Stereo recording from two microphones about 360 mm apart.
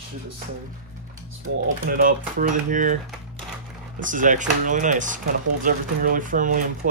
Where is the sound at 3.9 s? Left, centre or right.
Right.